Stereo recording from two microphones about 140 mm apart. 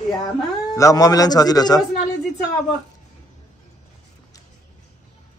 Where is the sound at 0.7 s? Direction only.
25° left (ahead or behind).